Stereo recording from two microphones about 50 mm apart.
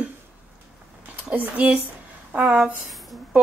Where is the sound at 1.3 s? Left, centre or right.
Right.